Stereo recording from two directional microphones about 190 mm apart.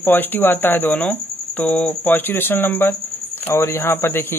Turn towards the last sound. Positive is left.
turn(degrees=10)  # may be behind; listen again after turning